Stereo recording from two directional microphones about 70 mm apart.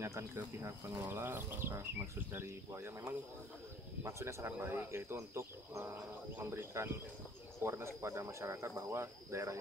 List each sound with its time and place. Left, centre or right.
0.0 s speech: right
4.5 s speech: right
5.1 s speech: right